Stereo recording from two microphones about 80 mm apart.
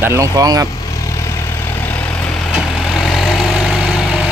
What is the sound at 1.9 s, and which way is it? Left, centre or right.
Vehicle, left.